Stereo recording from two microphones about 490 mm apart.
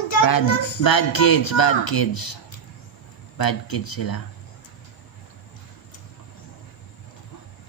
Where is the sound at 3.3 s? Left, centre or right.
Left.